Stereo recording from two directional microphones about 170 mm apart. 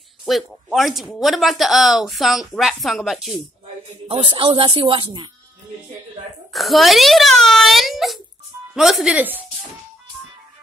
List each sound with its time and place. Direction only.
0.2 s speech: centre (ahead or behind)
4.1 s speech: 30° right (ahead or behind)
6.5 s speech: centre (ahead or behind)